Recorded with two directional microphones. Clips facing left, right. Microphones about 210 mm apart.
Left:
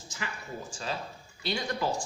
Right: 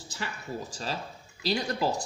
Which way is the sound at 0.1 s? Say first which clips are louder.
Right 3 dB; 35° right (ahead or behind).